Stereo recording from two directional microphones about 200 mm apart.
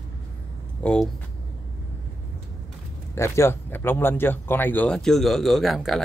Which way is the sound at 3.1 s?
15° left (ahead or behind).